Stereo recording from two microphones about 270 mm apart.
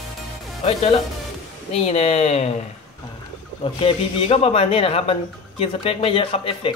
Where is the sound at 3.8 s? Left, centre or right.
Left.